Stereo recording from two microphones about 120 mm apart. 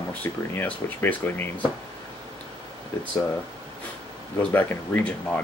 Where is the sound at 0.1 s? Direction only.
15° left (ahead or behind).